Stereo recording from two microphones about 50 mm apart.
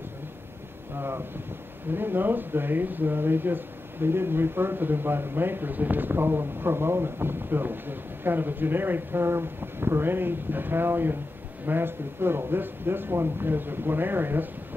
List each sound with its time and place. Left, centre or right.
0.9 s speech: right